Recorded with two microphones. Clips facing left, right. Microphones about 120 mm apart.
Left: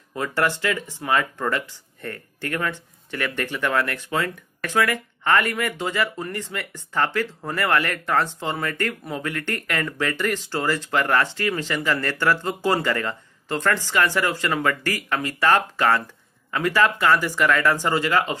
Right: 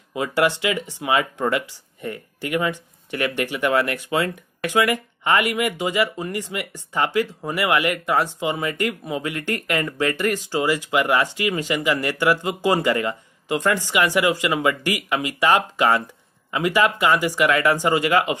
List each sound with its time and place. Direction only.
0.1 s speech: 15° right (ahead or behind)